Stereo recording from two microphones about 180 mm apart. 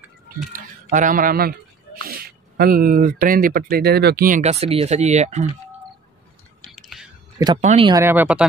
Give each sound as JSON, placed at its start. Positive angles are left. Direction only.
{"t": 0.5, "sound": "speech", "side_deg": -50}
{"t": 4.4, "sound": "speech", "side_deg": -35}
{"t": 6.7, "sound": "a sound", "side_deg": 0}
{"t": 7.6, "sound": "speech", "side_deg": -35}
{"t": 7.9, "sound": "speech", "side_deg": -15}